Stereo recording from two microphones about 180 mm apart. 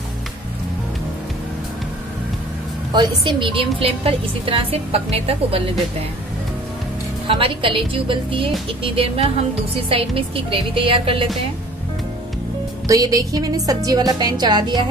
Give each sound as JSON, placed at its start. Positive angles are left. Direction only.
{"t": 2.9, "sound": "a woman's voice", "side_deg": -25}
{"t": 7.2, "sound": "a woman's voice", "side_deg": -30}
{"t": 12.8, "sound": "speech", "side_deg": -20}